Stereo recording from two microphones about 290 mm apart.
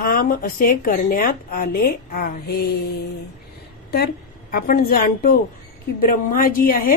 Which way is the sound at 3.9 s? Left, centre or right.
Left.